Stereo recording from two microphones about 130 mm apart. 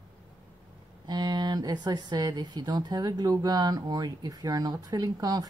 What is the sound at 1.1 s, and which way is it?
Speech, 30° right (ahead or behind).